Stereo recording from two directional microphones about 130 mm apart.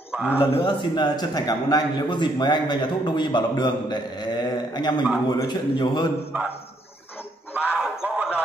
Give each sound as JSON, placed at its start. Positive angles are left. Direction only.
{"t": 0.4, "sound": "a man's voice", "side_deg": 40}
{"t": 6.3, "sound": "a man's voice", "side_deg": -15}
{"t": 7.5, "sound": "a sound", "side_deg": -10}